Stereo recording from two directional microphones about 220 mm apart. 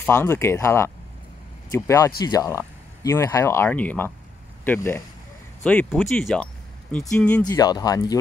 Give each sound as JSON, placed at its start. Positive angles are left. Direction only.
{"t": 0.0, "sound": "speech", "side_deg": 10}
{"t": 7.4, "sound": "speech", "side_deg": 15}